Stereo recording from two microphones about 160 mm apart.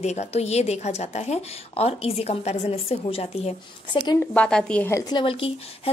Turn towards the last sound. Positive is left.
turn(degrees=30)  # may be behind; listen again after turning